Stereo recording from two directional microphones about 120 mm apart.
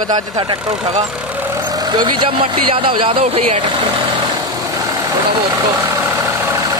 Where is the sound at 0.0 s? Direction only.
35° right (ahead or behind).